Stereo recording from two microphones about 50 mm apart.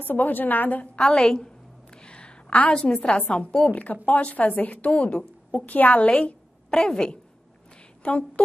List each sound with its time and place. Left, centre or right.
0.0 s a woman's voice: left
0.9 s a woman's voice: centre
2.0 s a sound: centre
2.7 s a woman's voice: centre
6.7 s a woman's voice: centre
8.0 s a woman's voice: left